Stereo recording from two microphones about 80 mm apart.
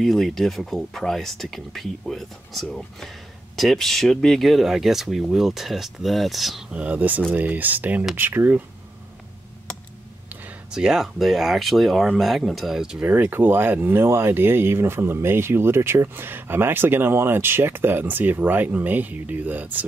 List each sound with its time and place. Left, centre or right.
0.0 s speech: centre
6.7 s speech: centre
10.7 s speech: centre
13.0 s speech: right